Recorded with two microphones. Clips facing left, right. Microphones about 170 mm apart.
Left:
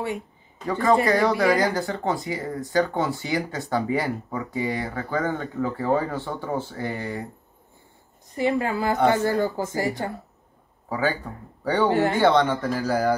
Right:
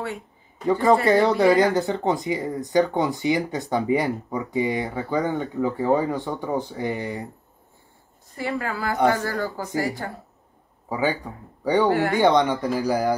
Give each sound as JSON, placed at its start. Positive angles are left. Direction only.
{"t": 0.7, "sound": "speech", "side_deg": -20}
{"t": 8.4, "sound": "speech", "side_deg": 20}
{"t": 10.9, "sound": "speech", "side_deg": -15}